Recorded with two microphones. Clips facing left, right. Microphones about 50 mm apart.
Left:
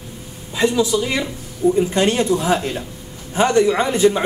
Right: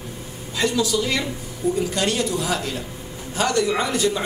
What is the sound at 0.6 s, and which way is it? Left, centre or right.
Speech, centre.